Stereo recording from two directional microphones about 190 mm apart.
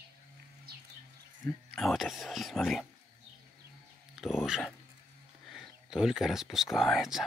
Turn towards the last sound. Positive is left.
turn(degrees=0)  # may be behind; listen again after turning